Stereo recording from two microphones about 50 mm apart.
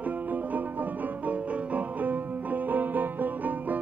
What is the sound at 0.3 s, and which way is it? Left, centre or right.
Music, right.